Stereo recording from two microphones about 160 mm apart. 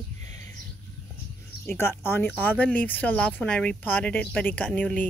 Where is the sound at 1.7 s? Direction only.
15° left (ahead or behind).